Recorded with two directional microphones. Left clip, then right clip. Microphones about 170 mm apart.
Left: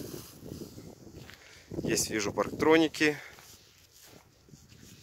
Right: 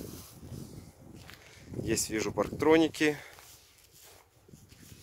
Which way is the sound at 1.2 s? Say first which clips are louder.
Left 1 dB; 10° right (ahead or behind).